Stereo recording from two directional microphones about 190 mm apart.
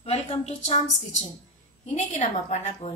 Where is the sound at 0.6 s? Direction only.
30° left (ahead or behind).